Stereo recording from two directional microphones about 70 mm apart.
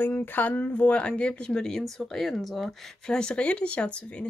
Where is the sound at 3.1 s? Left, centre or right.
Centre.